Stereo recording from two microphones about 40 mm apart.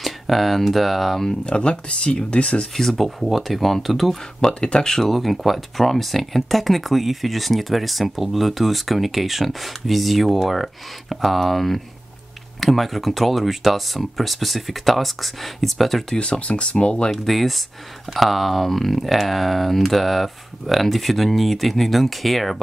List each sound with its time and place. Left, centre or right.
0.0 s speech: centre
1.4 s speech: left
2.7 s speech: centre
4.4 s speech: left
5.1 s speech: centre
16.2 s speech: left
17.1 s speech: centre